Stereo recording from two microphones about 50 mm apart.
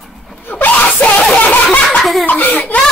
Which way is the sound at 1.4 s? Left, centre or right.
Left.